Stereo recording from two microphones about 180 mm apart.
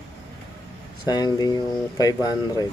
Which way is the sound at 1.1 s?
20° left (ahead or behind).